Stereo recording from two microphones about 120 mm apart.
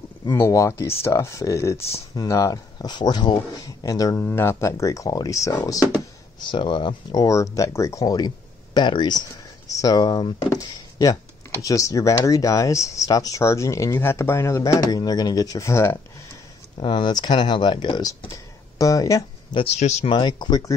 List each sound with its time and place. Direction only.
0.3 s speech: 25° left (ahead or behind)
4.3 s speech: 20° left (ahead or behind)
6.4 s speech: 40° left (ahead or behind); by 16.0 s 20° left (ahead or behind)
16.7 s speech: 40° left (ahead or behind)
19.5 s speech: 50° left (ahead or behind)
19.8 s speech: 70° left (ahead or behind)
20.1 s speech: 40° left (ahead or behind)